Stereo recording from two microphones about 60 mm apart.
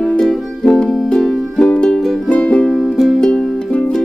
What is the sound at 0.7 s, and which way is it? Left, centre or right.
Music, centre.